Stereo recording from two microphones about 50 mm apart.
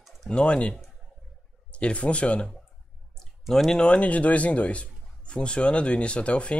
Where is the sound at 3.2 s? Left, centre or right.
Centre.